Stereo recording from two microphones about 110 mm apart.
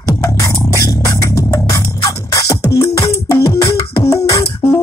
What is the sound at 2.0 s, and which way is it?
Music, 30° left (ahead or behind).